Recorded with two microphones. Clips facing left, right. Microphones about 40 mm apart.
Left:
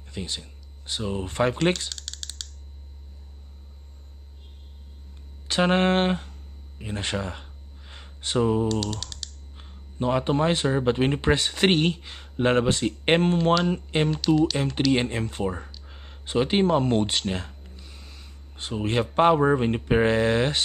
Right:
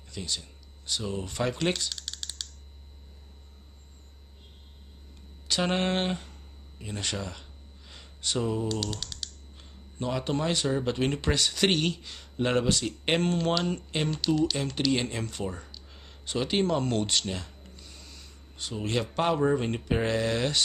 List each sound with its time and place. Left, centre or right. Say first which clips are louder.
0.0 s speech: left 2 dB; left
1.9 s typing: even; centre
5.5 s speech: left 6 dB; left
6.8 s a sound: left 5 dB; left
8.6 s speech: left 5 dB; centre
9.6 s speech: left 6 dB; left
17.6 s a sound: left 2 dB; centre
18.6 s speech: left 5 dB; left